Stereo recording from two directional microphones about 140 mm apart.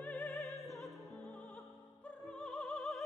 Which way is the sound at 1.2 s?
10° left (ahead or behind).